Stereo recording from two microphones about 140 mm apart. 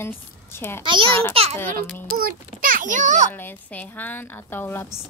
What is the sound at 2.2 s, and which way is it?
A child's voice, 90° right.